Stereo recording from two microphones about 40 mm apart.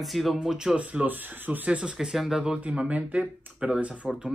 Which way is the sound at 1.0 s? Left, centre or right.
Right.